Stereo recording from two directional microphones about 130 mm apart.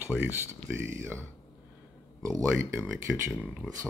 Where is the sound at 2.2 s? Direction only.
25° right (ahead or behind).